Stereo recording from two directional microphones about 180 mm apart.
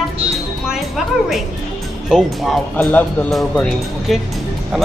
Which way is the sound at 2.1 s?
Centre (ahead or behind).